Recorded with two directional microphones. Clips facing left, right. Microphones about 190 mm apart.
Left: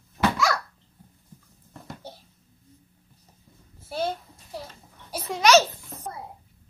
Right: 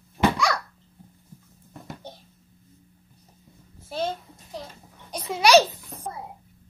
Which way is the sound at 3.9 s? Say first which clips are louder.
Even; 10° left (ahead or behind).